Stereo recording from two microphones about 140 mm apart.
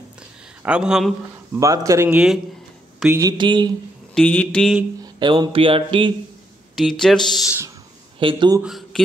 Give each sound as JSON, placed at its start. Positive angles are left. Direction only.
{"t": 0.7, "sound": "speech", "side_deg": -5}
{"t": 1.6, "sound": "speech", "side_deg": -25}
{"t": 2.0, "sound": "speech", "side_deg": -5}
{"t": 3.2, "sound": "speech", "side_deg": -30}
{"t": 4.1, "sound": "speech", "side_deg": 10}
{"t": 5.0, "sound": "speech", "side_deg": -30}
{"t": 6.7, "sound": "speech", "side_deg": 0}
{"t": 8.2, "sound": "speech", "side_deg": -35}
{"t": 8.6, "sound": "speech", "side_deg": 0}